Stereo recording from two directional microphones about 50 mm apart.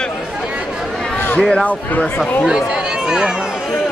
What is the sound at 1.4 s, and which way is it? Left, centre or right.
Speech, centre.